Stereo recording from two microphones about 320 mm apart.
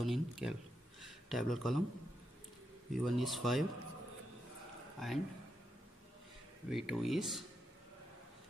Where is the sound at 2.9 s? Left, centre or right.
Centre.